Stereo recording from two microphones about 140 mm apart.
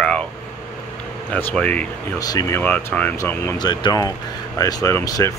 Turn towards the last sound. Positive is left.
turn(degrees=20)  # may be behind; listen again after turning